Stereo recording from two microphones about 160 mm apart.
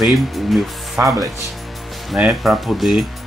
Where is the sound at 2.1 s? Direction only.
Centre (ahead or behind).